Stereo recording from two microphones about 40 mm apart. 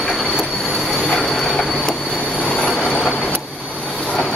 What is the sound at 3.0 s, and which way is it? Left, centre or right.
Train, centre.